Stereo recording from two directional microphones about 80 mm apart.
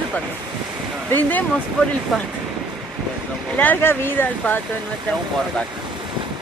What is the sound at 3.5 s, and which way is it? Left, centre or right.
Speech, left.